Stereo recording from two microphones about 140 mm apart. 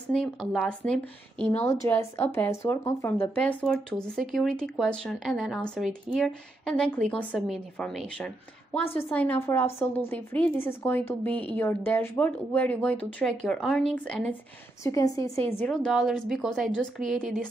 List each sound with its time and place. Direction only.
0.1 s speech: 5° left (ahead or behind)
1.5 s speech: 20° left (ahead or behind)
14.8 s a woman's voice: 25° left (ahead or behind)
15.6 s speech: 5° left (ahead or behind)